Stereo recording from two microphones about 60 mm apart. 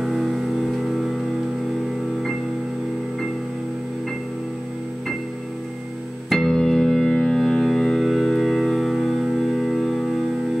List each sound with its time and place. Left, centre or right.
0.0 s music: centre
6.3 s organ: centre